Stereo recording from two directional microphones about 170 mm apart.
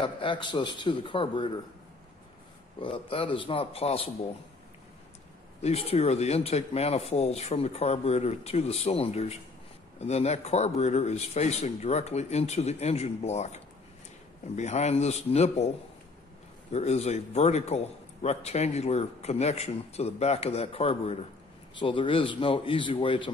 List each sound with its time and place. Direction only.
0.0 s a man's voice: 30° left (ahead or behind)
2.8 s a man's voice: 30° left (ahead or behind)
5.6 s a man's voice: 35° left (ahead or behind)
16.7 s a man's voice: 40° left (ahead or behind)